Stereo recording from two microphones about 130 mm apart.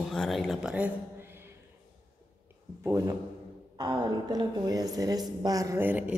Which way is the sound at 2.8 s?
25° right (ahead or behind).